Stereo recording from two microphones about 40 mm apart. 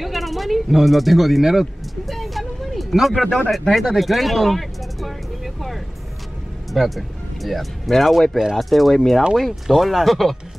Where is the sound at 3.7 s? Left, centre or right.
Centre.